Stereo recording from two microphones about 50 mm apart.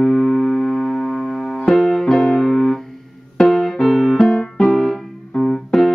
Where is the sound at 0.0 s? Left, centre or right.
Centre.